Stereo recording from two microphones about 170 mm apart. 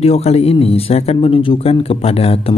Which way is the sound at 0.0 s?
35° left (ahead or behind).